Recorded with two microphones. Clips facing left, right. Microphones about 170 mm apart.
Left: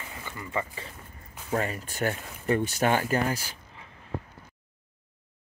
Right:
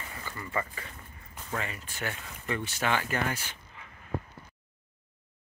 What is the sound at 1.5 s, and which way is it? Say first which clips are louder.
Speech: left 7 dB; 40° left (ahead or behind).